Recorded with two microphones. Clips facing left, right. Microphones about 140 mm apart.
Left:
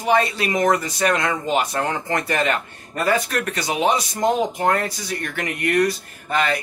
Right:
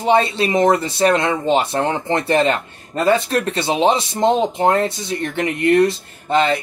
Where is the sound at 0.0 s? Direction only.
25° right (ahead or behind).